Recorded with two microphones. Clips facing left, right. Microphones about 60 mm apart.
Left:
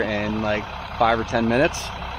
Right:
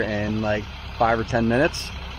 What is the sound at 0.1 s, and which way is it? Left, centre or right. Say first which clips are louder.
Speech: left 1 dB; left.